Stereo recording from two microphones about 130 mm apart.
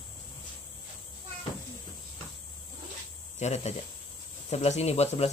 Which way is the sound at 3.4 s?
60° left (ahead or behind).